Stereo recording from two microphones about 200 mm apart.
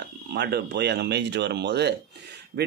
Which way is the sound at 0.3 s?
55° right (ahead or behind).